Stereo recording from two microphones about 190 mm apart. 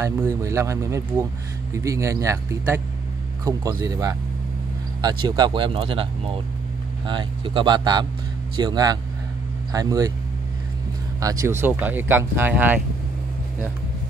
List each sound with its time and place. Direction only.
0.0 s speech: 15° right (ahead or behind)
11.1 s speech: 15° right (ahead or behind)